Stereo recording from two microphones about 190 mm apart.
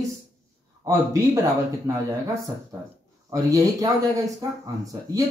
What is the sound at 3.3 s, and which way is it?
Speech, 20° right (ahead or behind).